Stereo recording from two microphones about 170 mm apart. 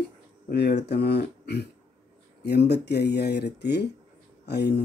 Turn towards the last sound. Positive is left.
turn(degrees=75)  # may be behind; listen again after turning